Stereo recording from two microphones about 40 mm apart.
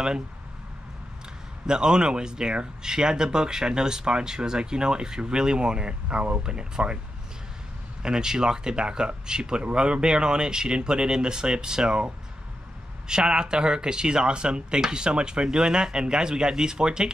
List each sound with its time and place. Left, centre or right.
1.7 s speech: centre
8.0 s speech: centre
13.1 s speech: centre